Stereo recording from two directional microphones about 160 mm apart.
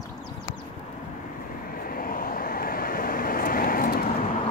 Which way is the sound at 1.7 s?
65° left (ahead or behind).